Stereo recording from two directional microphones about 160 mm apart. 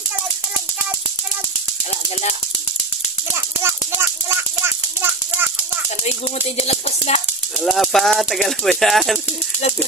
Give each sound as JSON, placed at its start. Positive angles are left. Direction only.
{"t": 3.6, "sound": "a sound", "side_deg": -15}
{"t": 6.0, "sound": "speech", "side_deg": 40}
{"t": 7.6, "sound": "speech", "side_deg": 0}